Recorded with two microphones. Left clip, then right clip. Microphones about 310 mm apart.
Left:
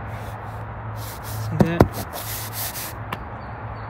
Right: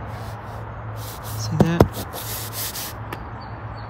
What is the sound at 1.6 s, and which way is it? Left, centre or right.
Speech, centre.